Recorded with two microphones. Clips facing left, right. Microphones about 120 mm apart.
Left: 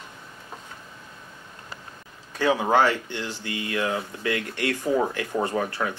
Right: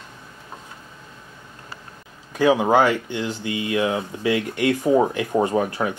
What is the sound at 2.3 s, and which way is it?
Speech, 15° right (ahead or behind).